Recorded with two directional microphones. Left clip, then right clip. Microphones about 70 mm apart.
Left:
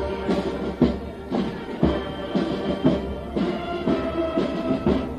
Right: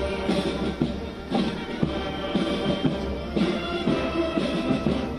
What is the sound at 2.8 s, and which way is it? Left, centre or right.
Music, left.